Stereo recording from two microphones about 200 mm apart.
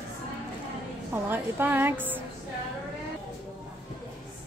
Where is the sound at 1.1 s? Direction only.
10° right (ahead or behind).